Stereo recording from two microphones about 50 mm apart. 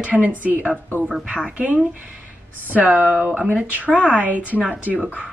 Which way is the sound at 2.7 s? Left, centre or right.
Right.